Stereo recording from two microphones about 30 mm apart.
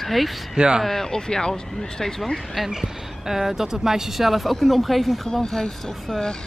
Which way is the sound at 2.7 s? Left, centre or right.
Centre.